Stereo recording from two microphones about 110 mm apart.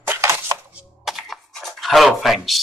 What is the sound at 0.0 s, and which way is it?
Chopping, 20° right (ahead or behind).